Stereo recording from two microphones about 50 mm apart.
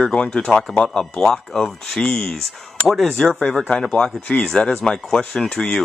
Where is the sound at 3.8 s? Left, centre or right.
Centre.